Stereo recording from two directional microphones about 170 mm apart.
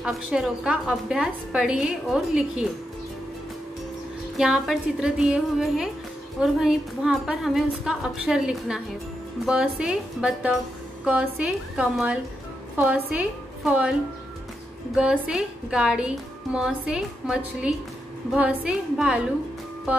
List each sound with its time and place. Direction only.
0.0 s a woman's voice: 5° right (ahead or behind)
4.4 s a woman's voice: 5° right (ahead or behind)
15.0 s a woman's voice: 5° right (ahead or behind)